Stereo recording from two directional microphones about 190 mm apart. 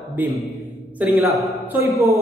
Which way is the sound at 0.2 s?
10° right (ahead or behind).